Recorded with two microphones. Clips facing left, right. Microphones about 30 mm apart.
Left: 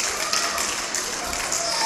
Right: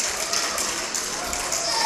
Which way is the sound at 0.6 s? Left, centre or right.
Centre.